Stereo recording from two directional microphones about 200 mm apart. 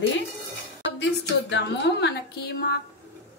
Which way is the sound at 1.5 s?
60° left (ahead or behind).